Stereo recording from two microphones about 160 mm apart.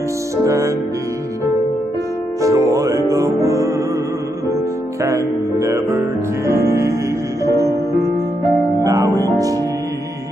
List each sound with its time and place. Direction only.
0.5 s music: 20° right (ahead or behind)
2.4 s music: 20° right (ahead or behind)
5.0 s music: 20° right (ahead or behind)
7.4 s music: 20° left (ahead or behind)
8.8 s music: 20° right (ahead or behind)